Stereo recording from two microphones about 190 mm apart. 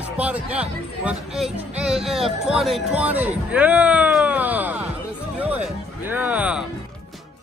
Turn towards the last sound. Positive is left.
turn(degrees=-5)  # may be behind; listen again after turning